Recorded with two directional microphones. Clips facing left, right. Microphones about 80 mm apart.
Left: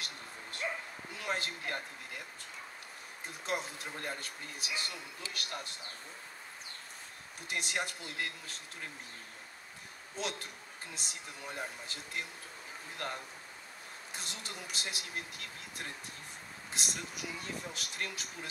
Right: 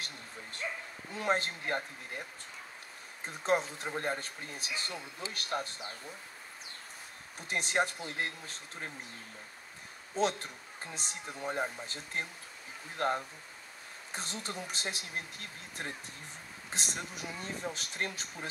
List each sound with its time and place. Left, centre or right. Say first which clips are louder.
0.0 s bow-wow: right 1 dB; right
1.1 s speech: right 6 dB; right
3.3 s speech: right 7 dB; right
7.4 s speech: right 6 dB; right
10.1 s speech: right 8 dB; right